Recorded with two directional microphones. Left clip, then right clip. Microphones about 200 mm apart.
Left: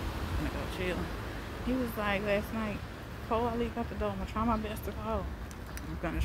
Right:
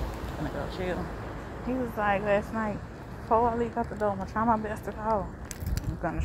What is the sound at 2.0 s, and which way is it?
Speech, 15° left (ahead or behind).